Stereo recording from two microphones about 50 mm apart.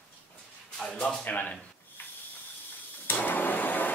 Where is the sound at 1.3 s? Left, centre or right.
Left.